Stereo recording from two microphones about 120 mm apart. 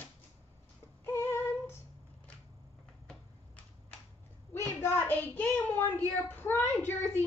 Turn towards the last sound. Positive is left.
turn(degrees=20)  # may be behind; listen again after turning